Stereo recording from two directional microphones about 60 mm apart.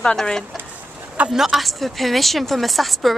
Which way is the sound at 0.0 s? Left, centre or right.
Centre.